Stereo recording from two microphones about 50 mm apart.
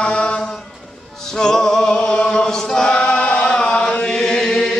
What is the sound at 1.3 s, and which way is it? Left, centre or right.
A capella, centre.